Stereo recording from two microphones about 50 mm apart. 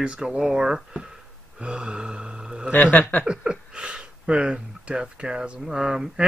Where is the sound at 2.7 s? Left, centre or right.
Left.